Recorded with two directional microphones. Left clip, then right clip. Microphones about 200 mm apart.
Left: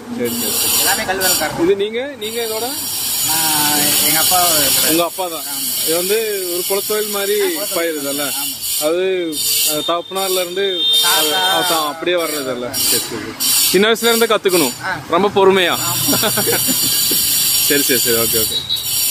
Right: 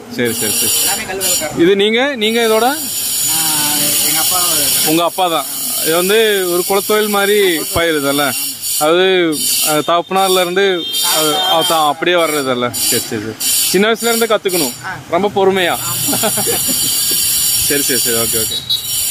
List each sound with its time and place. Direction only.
1.7 s speech: 45° right (ahead or behind)
3.5 s a sound: 15° left (ahead or behind)
4.9 s speech: 50° right (ahead or behind); by 13.0 s 35° right (ahead or behind)
13.7 s speech: 10° right (ahead or behind)
17.6 s speech: 10° right (ahead or behind)